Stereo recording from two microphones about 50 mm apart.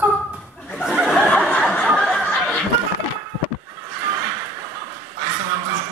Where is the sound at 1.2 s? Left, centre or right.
Centre.